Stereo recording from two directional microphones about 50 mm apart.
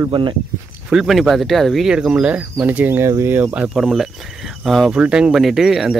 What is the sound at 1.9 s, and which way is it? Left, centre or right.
Speech, centre.